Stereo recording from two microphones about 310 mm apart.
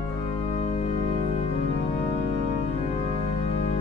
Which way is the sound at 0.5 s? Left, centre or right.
Left.